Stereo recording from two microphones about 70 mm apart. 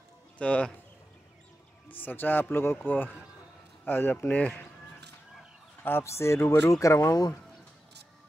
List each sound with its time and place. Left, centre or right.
0.4 s speech: centre
1.9 s speech: left
5.9 s speech: left